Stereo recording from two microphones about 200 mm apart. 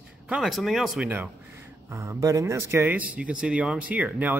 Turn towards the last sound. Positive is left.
turn(degrees=-10)  # may be behind; listen again after turning